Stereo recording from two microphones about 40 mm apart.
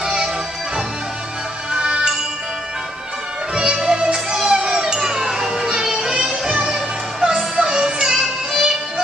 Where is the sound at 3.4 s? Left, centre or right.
Right.